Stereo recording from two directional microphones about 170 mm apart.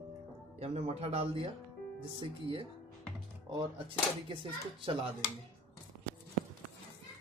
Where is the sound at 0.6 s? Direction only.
35° right (ahead or behind).